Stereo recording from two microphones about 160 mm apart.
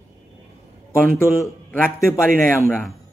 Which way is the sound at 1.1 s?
15° left (ahead or behind).